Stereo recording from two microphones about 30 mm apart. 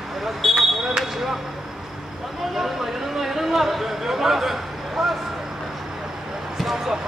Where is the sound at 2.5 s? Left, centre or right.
Centre.